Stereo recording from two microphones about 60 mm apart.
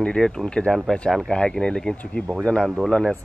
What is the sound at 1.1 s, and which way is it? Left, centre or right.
Speech, centre.